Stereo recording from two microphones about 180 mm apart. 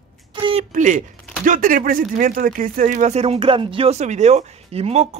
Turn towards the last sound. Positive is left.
turn(degrees=-35)  # may be behind; listen again after turning